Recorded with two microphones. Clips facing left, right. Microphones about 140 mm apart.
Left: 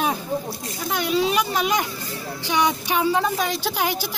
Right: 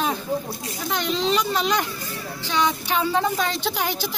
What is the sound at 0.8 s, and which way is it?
Speech, 10° left (ahead or behind).